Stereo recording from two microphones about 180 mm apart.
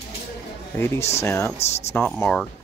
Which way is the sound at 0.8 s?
15° left (ahead or behind).